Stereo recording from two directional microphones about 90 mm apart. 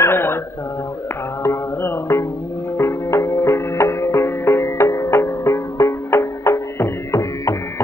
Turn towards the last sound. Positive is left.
turn(degrees=35)  # may be behind; listen again after turning